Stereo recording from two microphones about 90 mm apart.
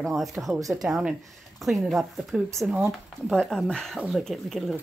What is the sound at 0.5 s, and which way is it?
Speech, 40° right (ahead or behind).